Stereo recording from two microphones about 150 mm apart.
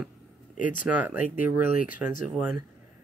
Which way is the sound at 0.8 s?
10° right (ahead or behind).